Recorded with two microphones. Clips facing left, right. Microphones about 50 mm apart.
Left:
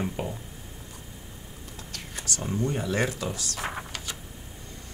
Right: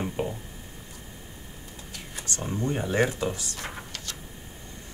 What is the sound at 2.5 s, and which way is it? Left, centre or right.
Speech, right.